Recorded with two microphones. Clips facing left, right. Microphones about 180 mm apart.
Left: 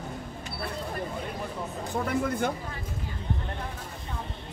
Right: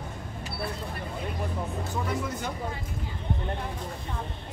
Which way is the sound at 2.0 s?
55° left (ahead or behind).